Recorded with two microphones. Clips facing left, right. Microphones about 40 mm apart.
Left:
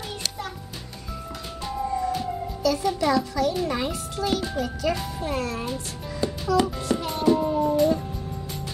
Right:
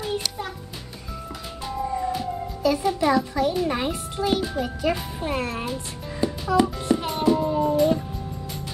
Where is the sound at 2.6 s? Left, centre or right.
Right.